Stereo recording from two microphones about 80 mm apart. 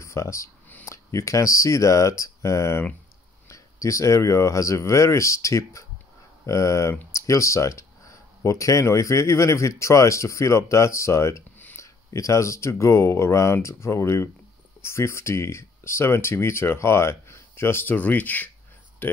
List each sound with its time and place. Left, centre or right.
0.0 s speech: left